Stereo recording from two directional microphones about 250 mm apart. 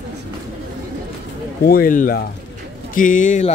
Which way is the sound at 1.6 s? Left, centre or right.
Left.